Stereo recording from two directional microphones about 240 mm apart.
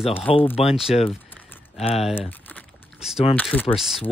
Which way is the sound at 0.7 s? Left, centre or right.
Centre.